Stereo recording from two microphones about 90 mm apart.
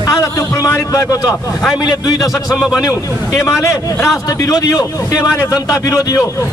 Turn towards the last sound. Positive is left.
turn(degrees=40)  # may be behind; listen again after turning